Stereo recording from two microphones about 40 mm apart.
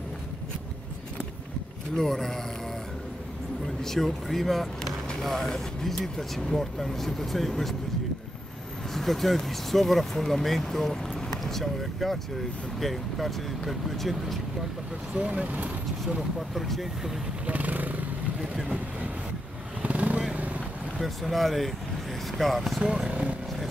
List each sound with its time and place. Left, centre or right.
2.0 s speech: centre
3.8 s speech: centre
8.9 s speech: centre
15.1 s speech: right
16.2 s speech: centre
17.5 s vehicle: right
19.8 s vehicle: right
21.0 s speech: centre
22.8 s speech: centre